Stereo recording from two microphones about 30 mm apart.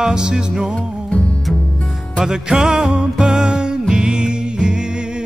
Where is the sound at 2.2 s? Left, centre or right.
Centre.